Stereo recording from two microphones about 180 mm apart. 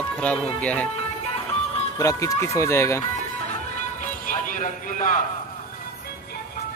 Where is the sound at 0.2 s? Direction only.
5° left (ahead or behind).